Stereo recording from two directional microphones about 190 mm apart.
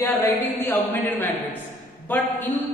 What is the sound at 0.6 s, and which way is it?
Speech, 10° left (ahead or behind).